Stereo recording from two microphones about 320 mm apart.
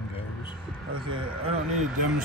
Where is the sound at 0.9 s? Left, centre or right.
Centre.